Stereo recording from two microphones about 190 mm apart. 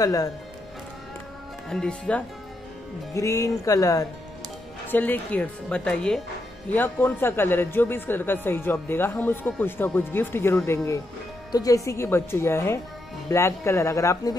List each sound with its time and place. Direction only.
0.0 s speech: 20° left (ahead or behind)
1.7 s speech: 5° left (ahead or behind)
3.2 s speech: 15° left (ahead or behind)